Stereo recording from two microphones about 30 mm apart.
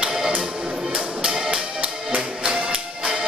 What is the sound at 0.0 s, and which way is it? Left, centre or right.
Music, right.